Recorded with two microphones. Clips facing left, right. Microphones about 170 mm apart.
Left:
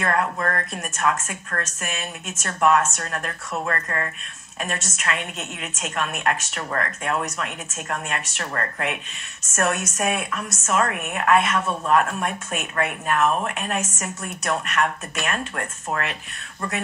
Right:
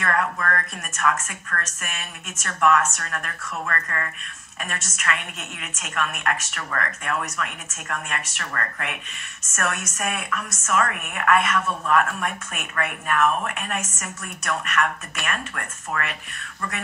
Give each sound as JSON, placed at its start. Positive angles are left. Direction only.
{"t": 0.0, "sound": "a woman's voice", "side_deg": 25}